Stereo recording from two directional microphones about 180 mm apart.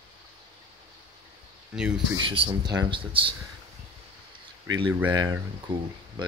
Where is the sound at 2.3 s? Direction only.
25° right (ahead or behind).